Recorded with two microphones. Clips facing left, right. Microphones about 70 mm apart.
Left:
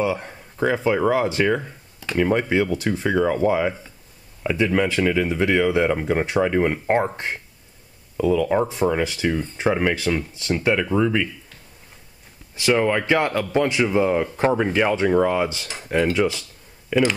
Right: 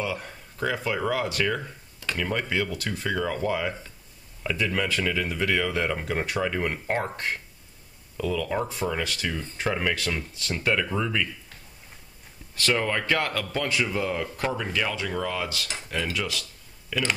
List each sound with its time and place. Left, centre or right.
0.0 s speech: left
12.5 s speech: centre